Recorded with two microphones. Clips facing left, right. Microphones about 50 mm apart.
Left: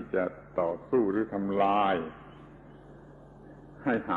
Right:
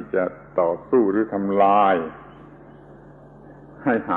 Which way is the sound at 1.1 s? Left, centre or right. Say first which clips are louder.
Right 8 dB; right.